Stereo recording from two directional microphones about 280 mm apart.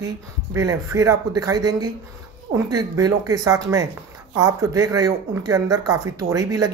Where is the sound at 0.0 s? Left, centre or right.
Centre.